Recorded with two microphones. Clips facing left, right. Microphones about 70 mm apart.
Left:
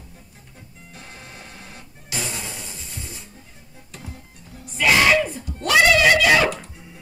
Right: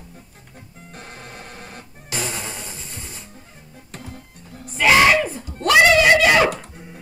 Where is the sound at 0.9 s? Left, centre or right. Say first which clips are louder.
Right 4 dB; right.